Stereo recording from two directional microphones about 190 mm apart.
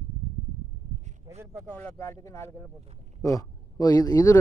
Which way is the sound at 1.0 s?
35° right (ahead or behind).